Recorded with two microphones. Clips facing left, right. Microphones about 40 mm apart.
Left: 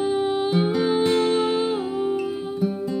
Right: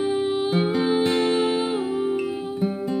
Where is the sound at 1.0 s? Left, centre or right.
Centre.